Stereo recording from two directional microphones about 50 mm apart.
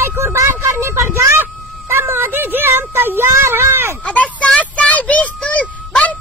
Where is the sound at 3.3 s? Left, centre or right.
Right.